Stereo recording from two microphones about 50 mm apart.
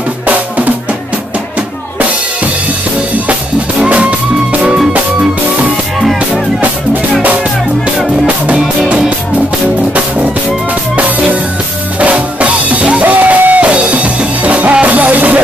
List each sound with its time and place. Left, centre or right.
0.3 s drum: right
3.8 s music: right
8.5 s music: right
12.0 s music: right